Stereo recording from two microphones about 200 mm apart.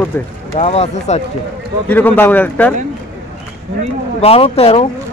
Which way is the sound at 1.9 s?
10° left (ahead or behind).